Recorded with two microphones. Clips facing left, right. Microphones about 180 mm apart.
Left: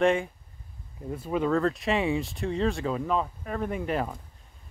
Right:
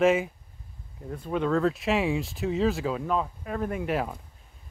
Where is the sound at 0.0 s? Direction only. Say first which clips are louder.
Right 2 dB; 5° right (ahead or behind).